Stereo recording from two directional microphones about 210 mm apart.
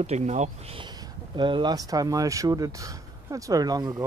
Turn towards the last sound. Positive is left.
turn(degrees=-20)  # may be behind; listen again after turning